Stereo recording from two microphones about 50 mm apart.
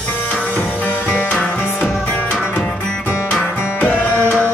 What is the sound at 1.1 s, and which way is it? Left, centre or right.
Music, centre.